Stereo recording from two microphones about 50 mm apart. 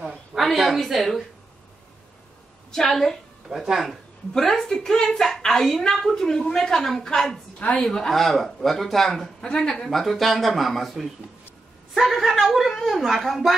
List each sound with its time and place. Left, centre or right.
0.1 s a sound: centre
2.7 s a woman's voice: centre
3.4 s speech: centre
4.3 s a woman's voice: centre
7.5 s a woman's voice: left
7.8 s a woman's voice: centre
9.4 s a woman's voice: centre
9.8 s a woman's voice: centre